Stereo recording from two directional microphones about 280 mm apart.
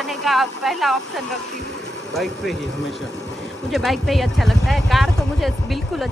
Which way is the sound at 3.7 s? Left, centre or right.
Centre.